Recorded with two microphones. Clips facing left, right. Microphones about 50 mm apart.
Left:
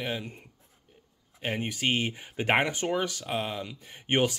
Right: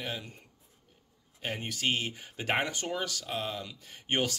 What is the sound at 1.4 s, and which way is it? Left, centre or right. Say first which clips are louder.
Speech: left 3 dB; left.